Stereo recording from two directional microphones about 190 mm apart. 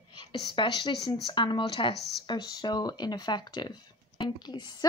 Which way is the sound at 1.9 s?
60° left (ahead or behind).